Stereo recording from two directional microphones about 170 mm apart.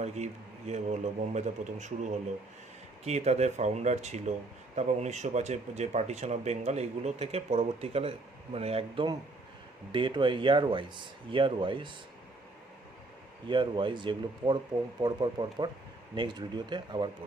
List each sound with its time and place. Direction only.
0.0 s a man's voice: 40° right (ahead or behind)
13.5 s speech: 30° right (ahead or behind)